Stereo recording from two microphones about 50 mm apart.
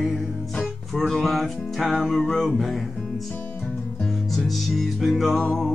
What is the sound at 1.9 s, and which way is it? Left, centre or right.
Music, centre.